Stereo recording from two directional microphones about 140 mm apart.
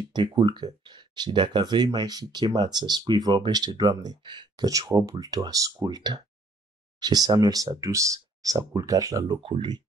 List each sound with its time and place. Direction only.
0.1 s speech: 30° right (ahead or behind)